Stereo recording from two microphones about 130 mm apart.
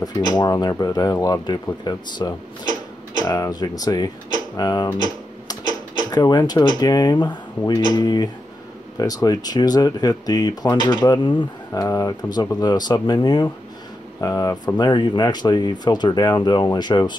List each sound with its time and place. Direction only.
0.0 s speech: 30° left (ahead or behind)
6.1 s speech: 30° left (ahead or behind)